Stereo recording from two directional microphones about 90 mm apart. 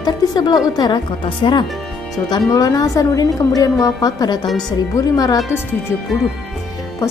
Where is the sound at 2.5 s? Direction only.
45° left (ahead or behind).